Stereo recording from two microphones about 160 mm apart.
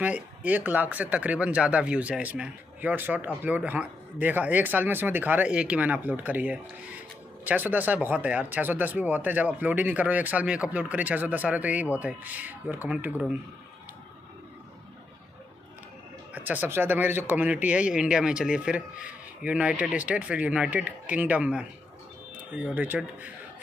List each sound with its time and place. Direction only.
0.0 s speech: 10° right (ahead or behind)
16.3 s speech: 10° right (ahead or behind)